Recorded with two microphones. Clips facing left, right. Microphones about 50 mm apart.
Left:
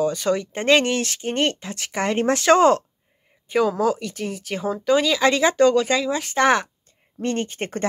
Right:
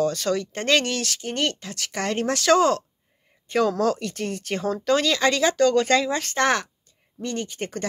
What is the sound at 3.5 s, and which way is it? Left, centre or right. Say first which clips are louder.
Speech: left 1 dB; centre.